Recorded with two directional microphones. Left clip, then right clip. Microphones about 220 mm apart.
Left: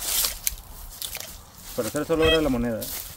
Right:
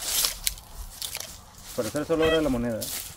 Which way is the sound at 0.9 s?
Centre (ahead or behind).